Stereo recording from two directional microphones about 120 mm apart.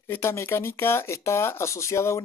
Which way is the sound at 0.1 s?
20° left (ahead or behind).